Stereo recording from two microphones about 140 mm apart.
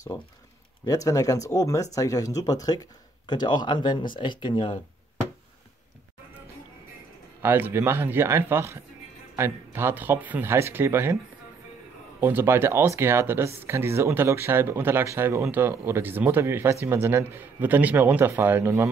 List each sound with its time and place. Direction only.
0.8 s speech: 25° left (ahead or behind)
7.4 s speech: 15° right (ahead or behind)
12.2 s speech: 15° right (ahead or behind)